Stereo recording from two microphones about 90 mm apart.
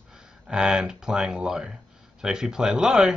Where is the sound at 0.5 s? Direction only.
10° right (ahead or behind).